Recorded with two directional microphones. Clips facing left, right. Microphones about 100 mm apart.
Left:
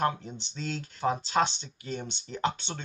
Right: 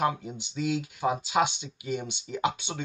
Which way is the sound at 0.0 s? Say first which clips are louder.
Right 1 dB; 10° right (ahead or behind).